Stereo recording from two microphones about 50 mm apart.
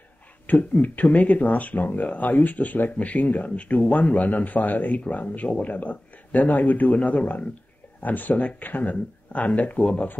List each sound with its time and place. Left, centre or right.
0.5 s speech: left